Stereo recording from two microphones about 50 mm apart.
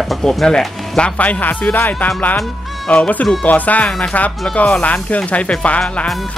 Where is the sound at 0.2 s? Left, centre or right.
Centre.